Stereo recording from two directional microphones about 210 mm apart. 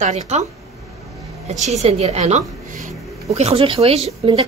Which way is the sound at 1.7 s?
30° right (ahead or behind).